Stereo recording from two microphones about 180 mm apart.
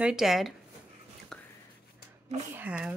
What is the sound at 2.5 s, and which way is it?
Speech, 10° right (ahead or behind).